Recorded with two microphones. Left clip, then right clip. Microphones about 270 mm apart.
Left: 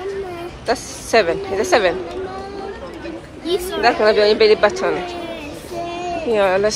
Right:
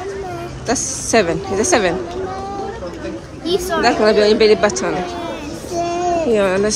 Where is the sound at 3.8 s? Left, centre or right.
Centre.